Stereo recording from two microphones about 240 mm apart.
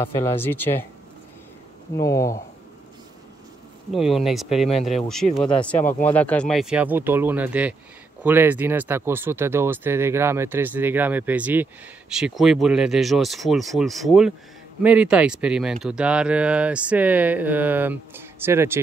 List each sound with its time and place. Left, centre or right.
0.0 s speech: centre
2.0 s speech: centre
3.9 s speech: centre